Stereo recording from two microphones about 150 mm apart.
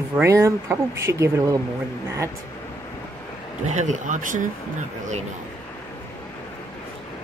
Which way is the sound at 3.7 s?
55° right (ahead or behind).